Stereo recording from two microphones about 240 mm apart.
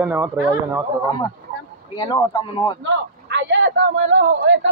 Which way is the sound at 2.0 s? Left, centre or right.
Centre.